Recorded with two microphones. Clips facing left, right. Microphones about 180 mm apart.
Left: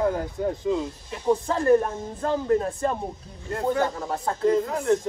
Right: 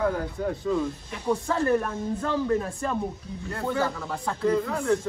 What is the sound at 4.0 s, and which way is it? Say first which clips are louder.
Speech: left 3 dB; 35° left (ahead or behind).